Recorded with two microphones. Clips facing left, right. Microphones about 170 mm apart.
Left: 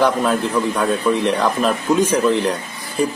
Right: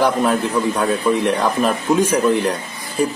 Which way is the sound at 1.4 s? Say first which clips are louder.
Even; 10° right (ahead or behind).